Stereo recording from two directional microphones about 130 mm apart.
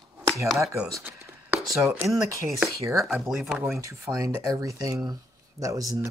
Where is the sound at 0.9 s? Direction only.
20° right (ahead or behind).